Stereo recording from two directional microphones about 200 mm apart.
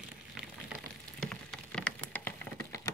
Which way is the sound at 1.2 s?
5° left (ahead or behind).